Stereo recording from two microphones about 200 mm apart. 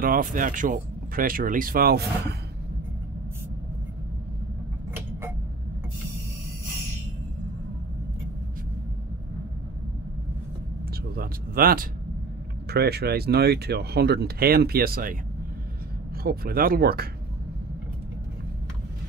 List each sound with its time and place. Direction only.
0.0 s speech: 45° right (ahead or behind)
11.1 s a sound: 45° right (ahead or behind)
12.6 s speech: 55° right (ahead or behind)
16.2 s speech: 50° right (ahead or behind)